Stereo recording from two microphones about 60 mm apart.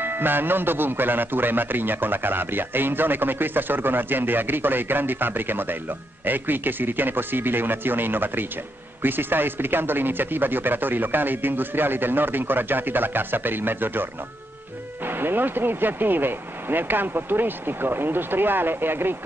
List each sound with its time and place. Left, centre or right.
0.0 s a man's voice: right
15.0 s a man's voice: right